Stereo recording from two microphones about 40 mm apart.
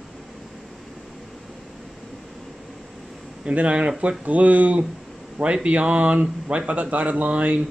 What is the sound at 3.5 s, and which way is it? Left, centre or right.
Speech, right.